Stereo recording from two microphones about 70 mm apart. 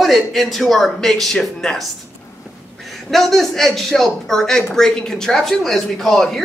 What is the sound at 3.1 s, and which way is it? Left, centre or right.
Speech, centre.